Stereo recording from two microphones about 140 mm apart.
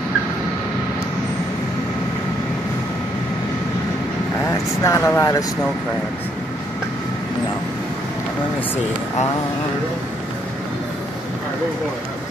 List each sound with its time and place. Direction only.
4.8 s speech: 20° left (ahead or behind)